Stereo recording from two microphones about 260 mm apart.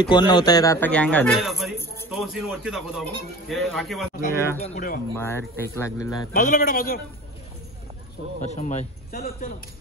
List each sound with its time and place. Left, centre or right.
0.0 s speech: centre
4.6 s a man's voice: left
5.1 s speech: centre
6.3 s a man's voice: left
8.5 s a man's voice: left